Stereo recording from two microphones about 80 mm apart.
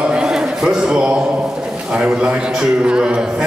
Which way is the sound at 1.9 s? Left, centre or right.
Centre.